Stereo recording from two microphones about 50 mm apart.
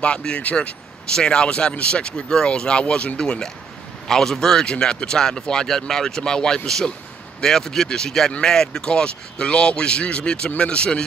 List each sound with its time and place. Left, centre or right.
0.3 s speech: centre